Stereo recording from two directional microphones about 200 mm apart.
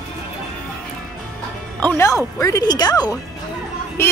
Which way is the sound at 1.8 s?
10° left (ahead or behind).